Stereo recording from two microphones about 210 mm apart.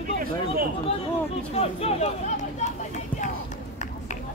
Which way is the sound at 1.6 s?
30° left (ahead or behind).